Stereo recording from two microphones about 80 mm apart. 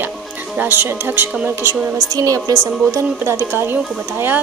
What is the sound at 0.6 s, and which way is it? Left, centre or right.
Speech, right.